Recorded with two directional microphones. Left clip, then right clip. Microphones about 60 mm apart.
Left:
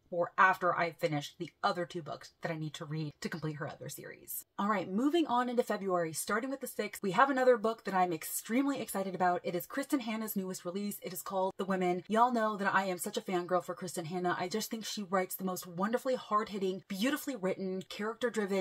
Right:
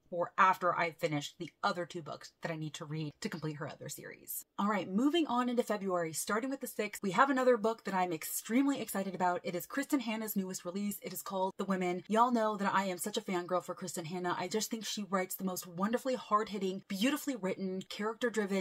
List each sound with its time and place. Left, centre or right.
0.2 s speech: right